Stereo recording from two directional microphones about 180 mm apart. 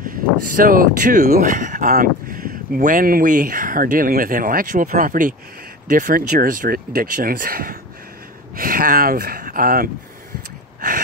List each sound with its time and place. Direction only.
0.0 s speech: 50° right (ahead or behind)